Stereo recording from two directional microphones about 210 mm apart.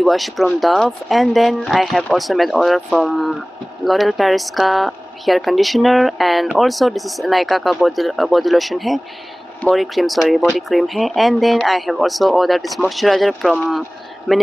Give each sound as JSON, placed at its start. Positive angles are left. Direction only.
{"t": 0.0, "sound": "speech", "side_deg": 0}